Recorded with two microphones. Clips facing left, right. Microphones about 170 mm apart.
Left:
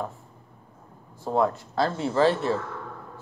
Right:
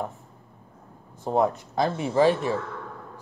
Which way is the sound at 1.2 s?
20° right (ahead or behind).